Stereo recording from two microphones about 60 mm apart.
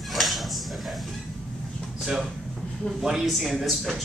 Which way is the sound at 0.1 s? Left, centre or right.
Centre.